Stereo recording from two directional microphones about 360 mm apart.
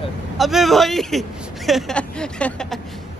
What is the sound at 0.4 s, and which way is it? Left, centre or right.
Speech, centre.